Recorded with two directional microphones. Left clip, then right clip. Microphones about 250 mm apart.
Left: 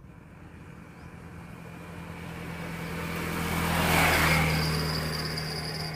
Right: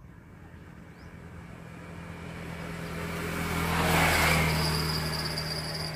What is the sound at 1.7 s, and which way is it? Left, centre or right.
Vehicle, left.